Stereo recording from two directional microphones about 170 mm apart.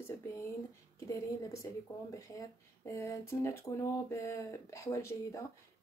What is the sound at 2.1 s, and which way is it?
Speech, 20° left (ahead or behind).